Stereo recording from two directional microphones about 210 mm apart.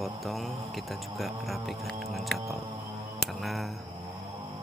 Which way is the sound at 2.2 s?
Centre (ahead or behind).